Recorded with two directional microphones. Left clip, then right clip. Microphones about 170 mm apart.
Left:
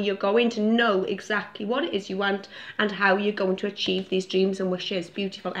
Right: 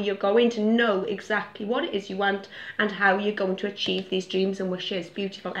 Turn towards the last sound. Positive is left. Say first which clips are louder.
# left 1 dB
turn(degrees=30)  # may be behind; listen again after turning